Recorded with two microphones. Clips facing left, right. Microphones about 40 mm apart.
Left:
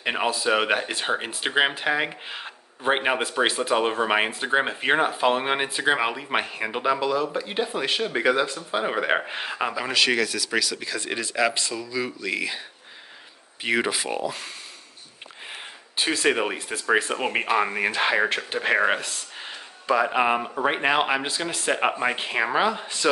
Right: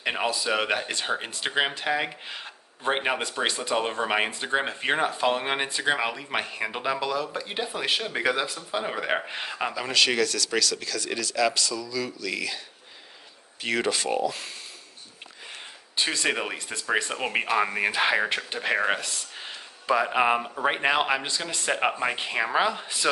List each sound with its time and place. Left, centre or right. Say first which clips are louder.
0.0 s speech: left 3 dB; centre
11.0 s speech: left 2 dB; left; by 14.5 s centre
16.0 s speech: left 4 dB; centre
18.5 s speech: left 4 dB; centre